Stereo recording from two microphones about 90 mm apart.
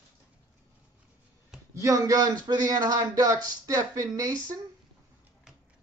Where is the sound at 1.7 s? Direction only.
35° right (ahead or behind).